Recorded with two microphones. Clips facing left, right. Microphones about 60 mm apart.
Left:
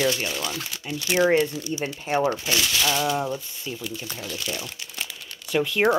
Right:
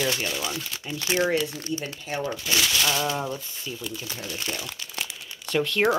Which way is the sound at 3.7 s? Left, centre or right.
Centre.